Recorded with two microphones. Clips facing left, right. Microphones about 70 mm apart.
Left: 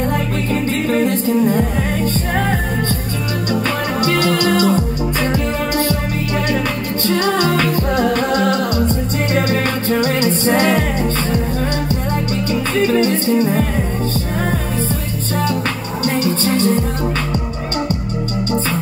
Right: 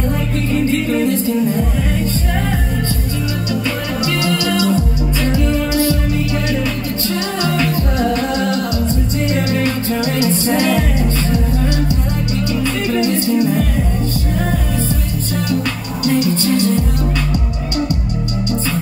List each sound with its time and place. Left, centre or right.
1.0 s music: left
4.0 s music: left
7.5 s music: left
12.4 s music: left
16.1 s music: left